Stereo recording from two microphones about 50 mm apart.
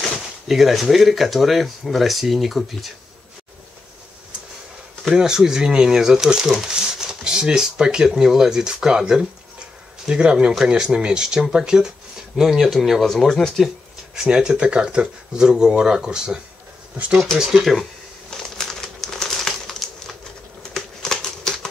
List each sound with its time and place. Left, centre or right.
0.0 s speech: centre
5.1 s speech: centre
13.0 s speech: centre
14.1 s speech: centre
17.4 s speech: centre
18.6 s crumpling: centre
20.7 s a sound: centre